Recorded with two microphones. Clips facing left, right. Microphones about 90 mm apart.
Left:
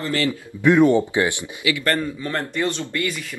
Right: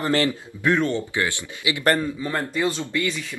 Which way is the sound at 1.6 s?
20° right (ahead or behind).